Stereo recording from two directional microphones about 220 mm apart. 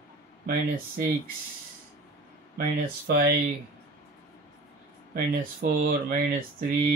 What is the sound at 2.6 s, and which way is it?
Speech, 45° right (ahead or behind).